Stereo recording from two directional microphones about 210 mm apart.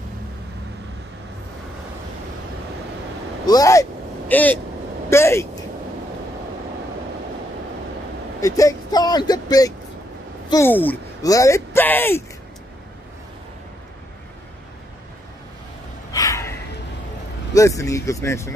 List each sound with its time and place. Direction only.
3.4 s speech: 15° left (ahead or behind)
8.4 s speech: 15° left (ahead or behind)
16.1 s a sound: 15° left (ahead or behind)
17.6 s speech: 15° left (ahead or behind)